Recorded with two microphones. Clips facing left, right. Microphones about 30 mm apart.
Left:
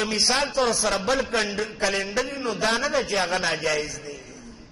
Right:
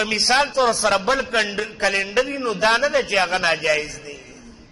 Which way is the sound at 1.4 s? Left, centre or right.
Right.